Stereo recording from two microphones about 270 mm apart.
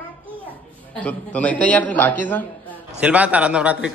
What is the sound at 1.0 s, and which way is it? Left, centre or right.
Speech, centre.